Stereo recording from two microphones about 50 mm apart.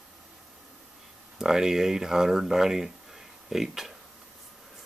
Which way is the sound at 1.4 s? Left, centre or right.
Centre.